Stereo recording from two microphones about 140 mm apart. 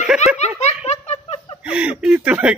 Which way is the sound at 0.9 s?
50° left (ahead or behind).